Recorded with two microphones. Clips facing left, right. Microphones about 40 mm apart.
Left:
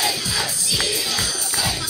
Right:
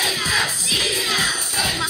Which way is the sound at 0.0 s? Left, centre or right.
Right.